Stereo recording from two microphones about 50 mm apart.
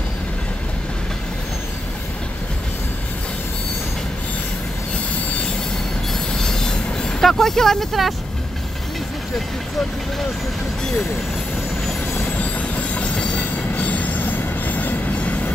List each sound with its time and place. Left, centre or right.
6.3 s train: centre
7.2 s speech: centre
12.4 s train: left
13.7 s train: left